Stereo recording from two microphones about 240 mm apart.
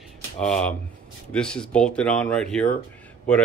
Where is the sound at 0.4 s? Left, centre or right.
Centre.